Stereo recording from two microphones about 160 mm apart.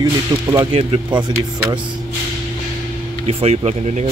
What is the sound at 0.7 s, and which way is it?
Speech, 35° right (ahead or behind).